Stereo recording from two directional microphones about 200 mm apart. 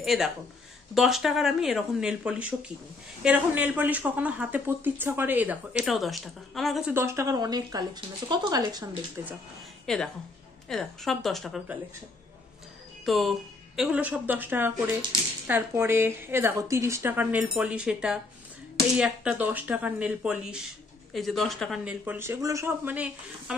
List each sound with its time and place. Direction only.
0.0 s speech: centre (ahead or behind)
6.9 s speech: 15° right (ahead or behind)
9.9 s speech: centre (ahead or behind)
13.0 s speech: centre (ahead or behind)